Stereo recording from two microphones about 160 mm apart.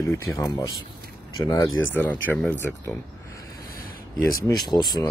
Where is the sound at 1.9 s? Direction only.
10° left (ahead or behind).